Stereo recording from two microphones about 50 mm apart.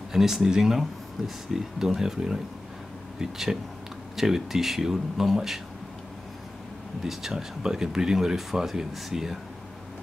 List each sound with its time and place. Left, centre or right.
0.1 s speech: centre
7.0 s speech: centre